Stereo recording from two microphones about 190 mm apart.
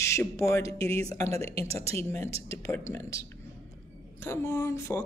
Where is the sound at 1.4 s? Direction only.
30° right (ahead or behind).